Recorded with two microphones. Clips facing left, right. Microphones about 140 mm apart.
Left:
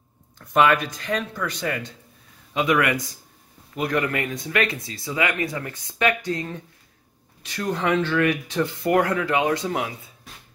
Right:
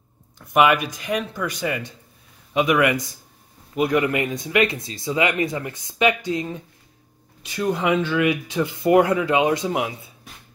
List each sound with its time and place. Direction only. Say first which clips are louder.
0.4 s speech: right 1 dB; 10° right (ahead or behind)